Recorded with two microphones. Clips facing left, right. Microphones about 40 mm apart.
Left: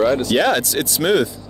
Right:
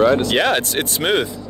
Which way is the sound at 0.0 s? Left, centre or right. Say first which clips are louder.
Right 1 dB; right.